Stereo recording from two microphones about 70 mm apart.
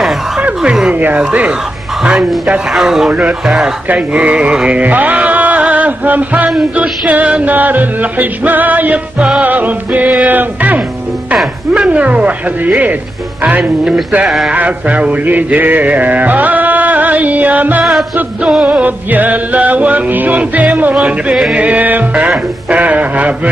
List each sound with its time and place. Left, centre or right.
0.6 s music: centre
0.9 s mantra: right
2.7 s music: centre
3.1 s mantra: centre
3.4 s music: centre
6.5 s mantra: centre
13.4 s music: centre
14.2 s speech: centre
14.5 s mantra: centre
21.6 s mantra: right